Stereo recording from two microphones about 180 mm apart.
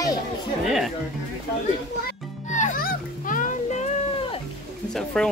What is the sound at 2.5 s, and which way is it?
Music, 45° left (ahead or behind).